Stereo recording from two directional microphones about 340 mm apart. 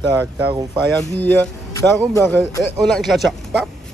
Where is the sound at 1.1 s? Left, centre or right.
Centre.